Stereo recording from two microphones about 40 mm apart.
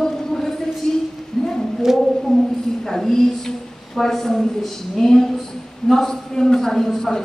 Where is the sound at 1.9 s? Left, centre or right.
Centre.